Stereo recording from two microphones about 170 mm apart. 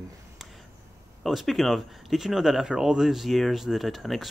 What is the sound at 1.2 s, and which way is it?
Speech, centre (ahead or behind).